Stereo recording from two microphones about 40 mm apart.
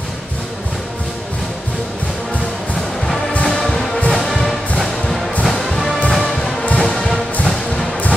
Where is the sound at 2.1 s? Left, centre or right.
Centre.